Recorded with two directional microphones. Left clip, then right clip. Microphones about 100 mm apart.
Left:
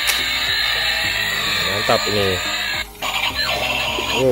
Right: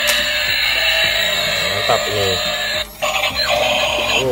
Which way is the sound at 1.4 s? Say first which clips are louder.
Right 2 dB; 20° left (ahead or behind).